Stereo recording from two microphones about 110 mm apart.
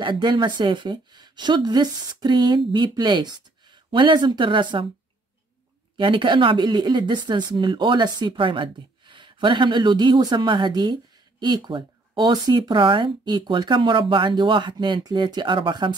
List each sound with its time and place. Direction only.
0.0 s speech: 45° right (ahead or behind)
5.9 s speech: 50° right (ahead or behind)